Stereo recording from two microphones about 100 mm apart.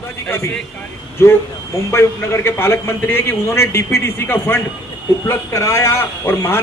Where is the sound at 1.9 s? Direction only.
25° left (ahead or behind).